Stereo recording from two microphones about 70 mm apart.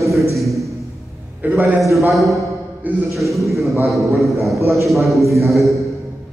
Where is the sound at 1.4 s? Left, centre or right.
Right.